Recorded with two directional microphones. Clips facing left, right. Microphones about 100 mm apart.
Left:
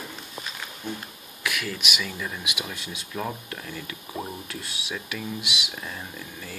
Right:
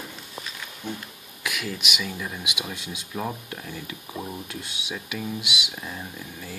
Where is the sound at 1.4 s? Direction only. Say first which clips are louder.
Left 1 dB; 10° right (ahead or behind).